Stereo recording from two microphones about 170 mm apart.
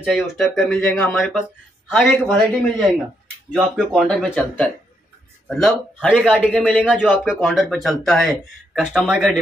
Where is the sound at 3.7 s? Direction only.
5° left (ahead or behind).